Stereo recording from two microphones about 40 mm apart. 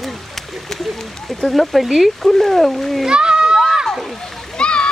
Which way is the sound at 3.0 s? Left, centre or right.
Right.